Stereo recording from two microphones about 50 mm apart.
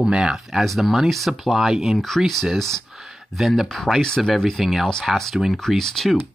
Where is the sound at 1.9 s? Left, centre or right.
Centre.